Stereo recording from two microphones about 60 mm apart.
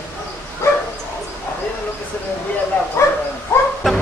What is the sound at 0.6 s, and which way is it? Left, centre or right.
Dog, left.